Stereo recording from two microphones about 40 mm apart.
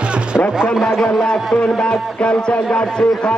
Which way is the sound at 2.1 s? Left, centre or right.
Left.